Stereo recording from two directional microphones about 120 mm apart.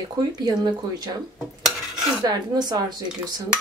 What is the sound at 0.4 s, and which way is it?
Speech, 35° right (ahead or behind).